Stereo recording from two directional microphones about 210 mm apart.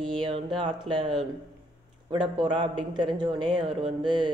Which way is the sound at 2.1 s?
20° right (ahead or behind).